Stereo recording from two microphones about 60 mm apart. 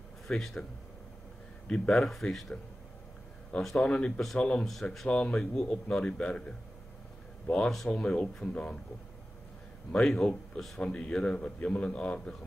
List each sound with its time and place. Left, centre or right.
0.3 s speech: centre
1.7 s speech: centre
3.8 s a man's voice: centre
7.5 s a man's voice: centre
10.0 s a man's voice: centre